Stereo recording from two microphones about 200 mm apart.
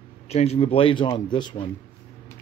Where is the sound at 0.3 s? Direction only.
30° left (ahead or behind).